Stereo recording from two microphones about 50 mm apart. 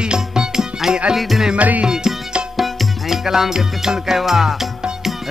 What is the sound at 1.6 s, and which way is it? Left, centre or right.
Speech, right.